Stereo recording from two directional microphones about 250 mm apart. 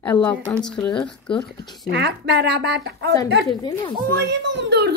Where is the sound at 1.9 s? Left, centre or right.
Right.